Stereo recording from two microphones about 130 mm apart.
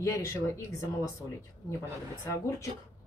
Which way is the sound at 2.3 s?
25° left (ahead or behind).